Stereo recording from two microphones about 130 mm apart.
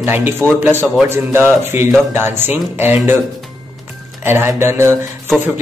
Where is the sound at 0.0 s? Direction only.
15° right (ahead or behind).